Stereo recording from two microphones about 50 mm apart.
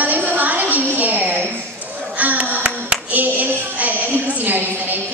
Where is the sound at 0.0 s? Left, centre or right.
Right.